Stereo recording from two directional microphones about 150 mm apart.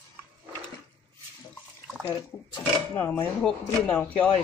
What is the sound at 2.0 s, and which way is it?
Speech, 15° left (ahead or behind).